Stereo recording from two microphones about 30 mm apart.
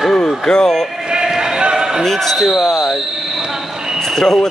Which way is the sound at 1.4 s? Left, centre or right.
Right.